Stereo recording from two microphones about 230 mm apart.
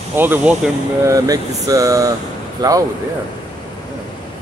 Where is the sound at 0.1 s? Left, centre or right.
Centre.